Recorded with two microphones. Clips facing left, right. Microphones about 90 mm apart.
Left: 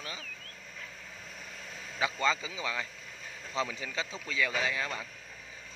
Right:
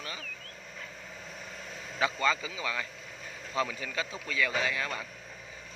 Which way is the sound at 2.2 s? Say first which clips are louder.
Right 1 dB; 25° left (ahead or behind).